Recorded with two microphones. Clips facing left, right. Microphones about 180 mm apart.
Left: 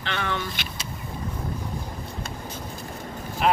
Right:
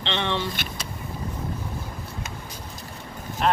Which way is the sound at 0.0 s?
25° right (ahead or behind).